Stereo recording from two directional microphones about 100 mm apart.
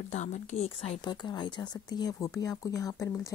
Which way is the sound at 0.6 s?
85° left.